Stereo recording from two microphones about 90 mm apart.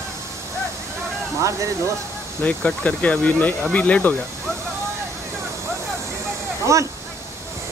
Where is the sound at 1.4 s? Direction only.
35° right (ahead or behind).